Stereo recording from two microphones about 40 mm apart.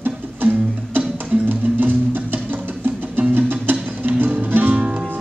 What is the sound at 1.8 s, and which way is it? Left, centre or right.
Music, right.